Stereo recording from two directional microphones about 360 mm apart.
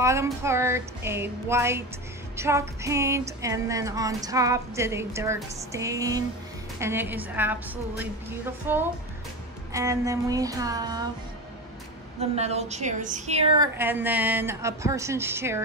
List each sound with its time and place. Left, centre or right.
0.0 s music: centre
6.8 s a woman's voice: centre
9.7 s music: centre
12.2 s music: centre
13.7 s music: centre